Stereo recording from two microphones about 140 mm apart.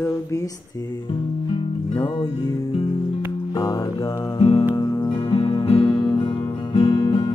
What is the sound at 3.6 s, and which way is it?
Speech, 25° left (ahead or behind).